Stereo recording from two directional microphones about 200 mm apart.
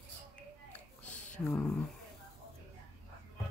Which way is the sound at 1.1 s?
35° left (ahead or behind).